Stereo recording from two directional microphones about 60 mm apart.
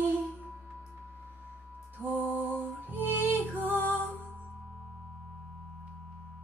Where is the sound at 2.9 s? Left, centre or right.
Right.